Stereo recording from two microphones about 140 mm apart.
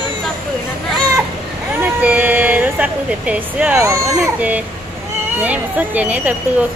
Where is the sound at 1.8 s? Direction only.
10° right (ahead or behind).